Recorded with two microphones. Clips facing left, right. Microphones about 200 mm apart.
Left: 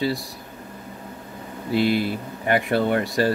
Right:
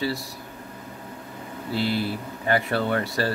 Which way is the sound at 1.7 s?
15° left (ahead or behind).